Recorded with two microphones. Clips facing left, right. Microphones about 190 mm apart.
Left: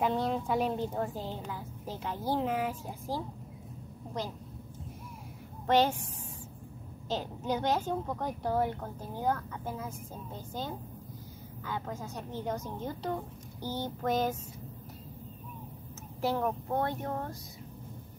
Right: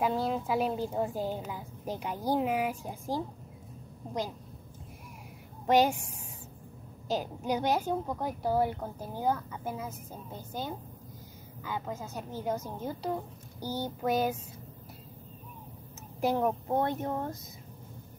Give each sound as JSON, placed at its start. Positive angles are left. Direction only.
{"t": 0.0, "sound": "a woman's voice", "side_deg": -5}
{"t": 5.7, "sound": "a woman's voice", "side_deg": -10}
{"t": 7.1, "sound": "a woman's voice", "side_deg": -10}
{"t": 11.6, "sound": "a woman's voice", "side_deg": -5}
{"t": 16.2, "sound": "a woman's voice", "side_deg": -15}